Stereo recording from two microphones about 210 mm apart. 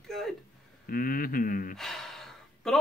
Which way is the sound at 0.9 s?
45° left (ahead or behind).